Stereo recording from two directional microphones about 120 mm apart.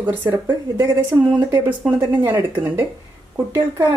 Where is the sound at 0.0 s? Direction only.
15° right (ahead or behind).